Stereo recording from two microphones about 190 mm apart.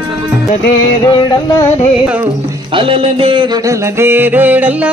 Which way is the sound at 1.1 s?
25° left (ahead or behind).